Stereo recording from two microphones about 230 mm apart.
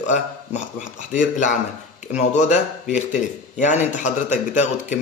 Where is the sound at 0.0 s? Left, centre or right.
Left.